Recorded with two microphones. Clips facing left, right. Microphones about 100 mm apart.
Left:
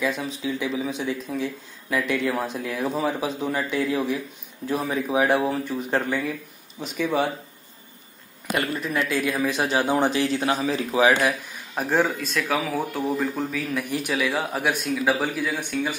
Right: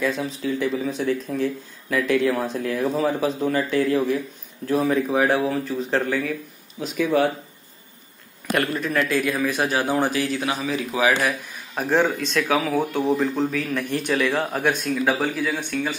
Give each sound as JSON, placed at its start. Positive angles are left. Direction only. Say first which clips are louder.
{"t": 0.0, "sound": "speech", "louder": "right 2 dB", "side_deg": 0}
{"t": 8.5, "sound": "a man's voice", "louder": "right 3 dB", "side_deg": 15}
{"t": 11.7, "sound": "a man's voice", "louder": "right 2 dB", "side_deg": 10}